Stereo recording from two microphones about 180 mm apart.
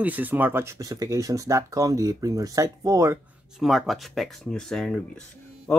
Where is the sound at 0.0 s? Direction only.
10° right (ahead or behind).